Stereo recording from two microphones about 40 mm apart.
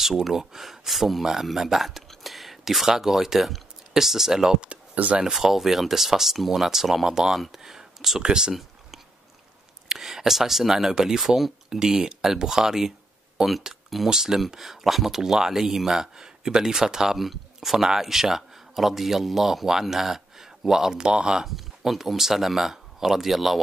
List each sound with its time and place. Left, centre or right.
0.0 s speech: centre
4.9 s speech: right
5.2 s speech: centre
9.9 s speech: centre
21.5 s speech: centre